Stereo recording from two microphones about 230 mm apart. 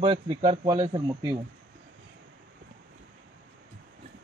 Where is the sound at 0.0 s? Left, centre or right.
Right.